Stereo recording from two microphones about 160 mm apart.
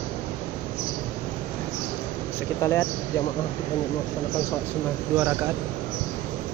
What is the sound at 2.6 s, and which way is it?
Speech, 15° left (ahead or behind).